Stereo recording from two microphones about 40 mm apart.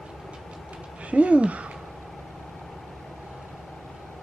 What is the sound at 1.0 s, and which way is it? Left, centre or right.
Speech, right.